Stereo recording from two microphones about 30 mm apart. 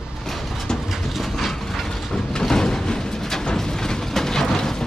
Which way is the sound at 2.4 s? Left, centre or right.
Centre.